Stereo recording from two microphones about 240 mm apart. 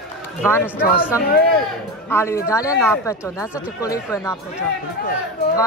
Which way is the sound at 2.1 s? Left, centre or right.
Centre.